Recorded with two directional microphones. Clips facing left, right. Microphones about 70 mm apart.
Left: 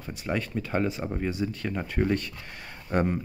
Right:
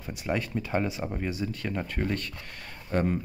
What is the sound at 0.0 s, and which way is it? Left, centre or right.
Speech, centre.